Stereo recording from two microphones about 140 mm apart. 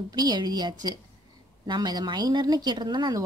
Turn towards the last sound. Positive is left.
turn(degrees=-30)  # may be behind; listen again after turning